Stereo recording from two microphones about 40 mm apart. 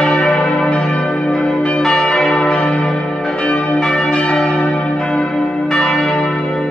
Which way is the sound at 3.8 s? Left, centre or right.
Centre.